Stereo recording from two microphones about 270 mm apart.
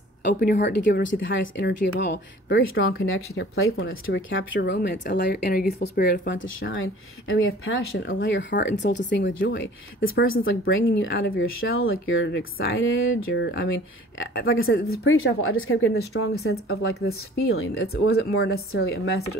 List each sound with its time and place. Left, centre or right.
0.3 s speech: left
3.7 s speech: left
6.3 s speech: left